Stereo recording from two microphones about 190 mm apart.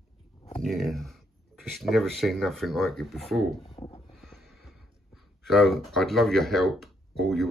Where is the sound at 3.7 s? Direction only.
30° left (ahead or behind).